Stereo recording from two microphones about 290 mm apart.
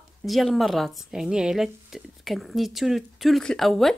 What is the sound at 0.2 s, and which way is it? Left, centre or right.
Speech, centre.